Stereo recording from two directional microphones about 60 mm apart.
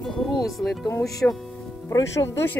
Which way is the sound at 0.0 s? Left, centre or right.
Centre.